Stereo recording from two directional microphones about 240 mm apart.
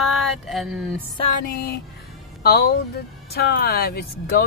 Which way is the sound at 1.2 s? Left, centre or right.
Left.